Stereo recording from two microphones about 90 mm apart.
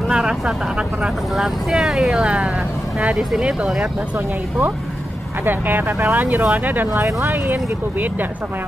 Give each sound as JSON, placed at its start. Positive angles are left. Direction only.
{"t": 0.1, "sound": "speech", "side_deg": -10}
{"t": 5.4, "sound": "speech", "side_deg": -20}